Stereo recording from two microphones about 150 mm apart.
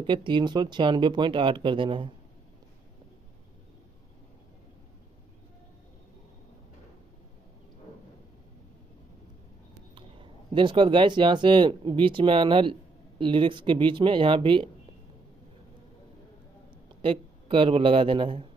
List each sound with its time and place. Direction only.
0.0 s speech: 30° right (ahead or behind)
9.9 s speech: 35° right (ahead or behind)
17.0 s a man's voice: 35° right (ahead or behind)